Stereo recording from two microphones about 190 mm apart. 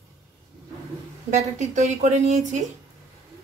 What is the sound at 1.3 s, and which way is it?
Speech, 40° right (ahead or behind).